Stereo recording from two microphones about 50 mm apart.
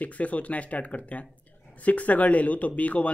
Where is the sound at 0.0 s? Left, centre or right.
Left.